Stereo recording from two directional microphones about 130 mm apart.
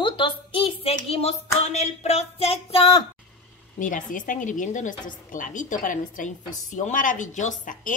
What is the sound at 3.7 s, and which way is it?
A woman's voice, 90° left.